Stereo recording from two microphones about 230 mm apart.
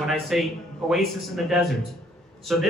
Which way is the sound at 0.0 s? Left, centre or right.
Centre.